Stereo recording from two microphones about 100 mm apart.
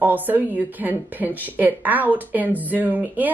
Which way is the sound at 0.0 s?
20° right (ahead or behind).